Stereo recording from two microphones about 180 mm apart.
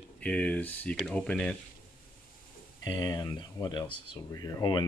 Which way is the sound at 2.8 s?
20° left (ahead or behind).